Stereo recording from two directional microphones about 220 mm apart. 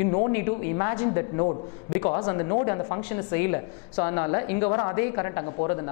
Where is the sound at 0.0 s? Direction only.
15° left (ahead or behind).